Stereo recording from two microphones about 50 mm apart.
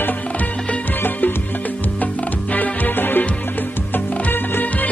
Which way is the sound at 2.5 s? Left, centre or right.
Left.